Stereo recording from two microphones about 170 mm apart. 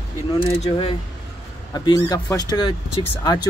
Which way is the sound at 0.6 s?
35° left (ahead or behind).